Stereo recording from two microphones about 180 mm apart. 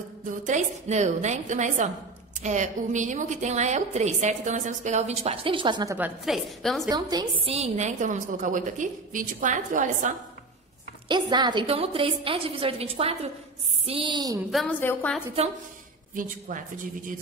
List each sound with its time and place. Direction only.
0.5 s a woman's voice: 40° right (ahead or behind); by 5.9 s 25° right (ahead or behind)
5.9 s a woman's voice: 5° right (ahead or behind)
6.9 s a woman's voice: 20° right (ahead or behind); by 10.1 s 45° right (ahead or behind)
11.1 s a woman's voice: 25° right (ahead or behind)
13.8 s a sound: 30° right (ahead or behind)
14.5 s a woman's voice: 5° left (ahead or behind)
16.2 s a woman's voice: 45° right (ahead or behind)